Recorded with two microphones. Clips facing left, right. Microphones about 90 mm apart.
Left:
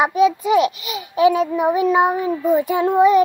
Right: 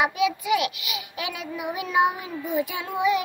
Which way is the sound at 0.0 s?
35° left (ahead or behind).